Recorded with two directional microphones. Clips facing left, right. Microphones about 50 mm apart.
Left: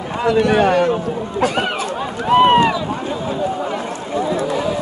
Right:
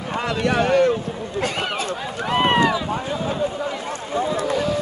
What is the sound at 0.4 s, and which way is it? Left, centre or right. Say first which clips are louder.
Speech: left 3 dB; left.